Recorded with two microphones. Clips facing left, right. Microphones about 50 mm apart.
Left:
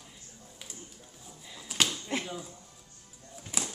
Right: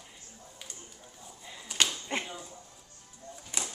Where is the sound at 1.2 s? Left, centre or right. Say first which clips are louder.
Right 1 dB; centre.